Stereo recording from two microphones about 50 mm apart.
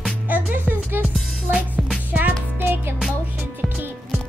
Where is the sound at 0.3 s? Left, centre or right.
Right.